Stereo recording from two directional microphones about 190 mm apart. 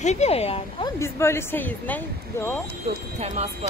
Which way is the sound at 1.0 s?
15° left (ahead or behind).